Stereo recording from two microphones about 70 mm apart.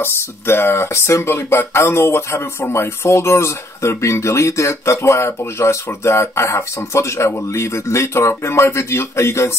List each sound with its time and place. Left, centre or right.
0.0 s speech: left